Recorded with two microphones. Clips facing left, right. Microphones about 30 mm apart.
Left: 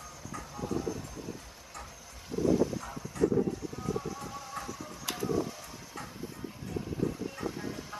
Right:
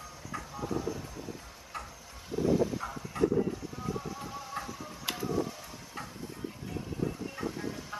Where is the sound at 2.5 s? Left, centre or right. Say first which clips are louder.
Left 1 dB; centre.